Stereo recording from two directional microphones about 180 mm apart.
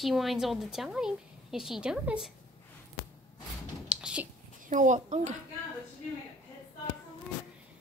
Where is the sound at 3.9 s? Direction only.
5° right (ahead or behind).